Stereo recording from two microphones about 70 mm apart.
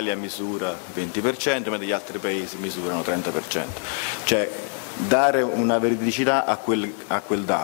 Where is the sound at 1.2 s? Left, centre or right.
Centre.